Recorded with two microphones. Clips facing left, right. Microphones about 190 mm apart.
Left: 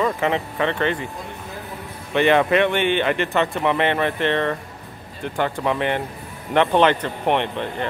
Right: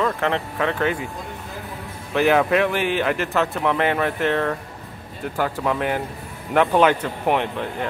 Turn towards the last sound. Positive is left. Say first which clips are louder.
# left 1 dB
turn(degrees=-5)  # may be behind; listen again after turning